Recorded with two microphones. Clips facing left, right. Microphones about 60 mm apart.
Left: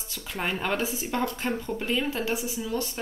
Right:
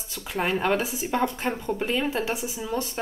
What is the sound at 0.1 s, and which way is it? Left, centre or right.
Speech, centre.